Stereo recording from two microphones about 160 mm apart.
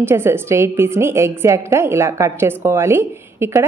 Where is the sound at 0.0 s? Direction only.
15° right (ahead or behind).